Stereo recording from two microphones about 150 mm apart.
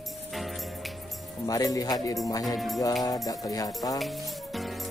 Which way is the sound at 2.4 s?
Centre (ahead or behind).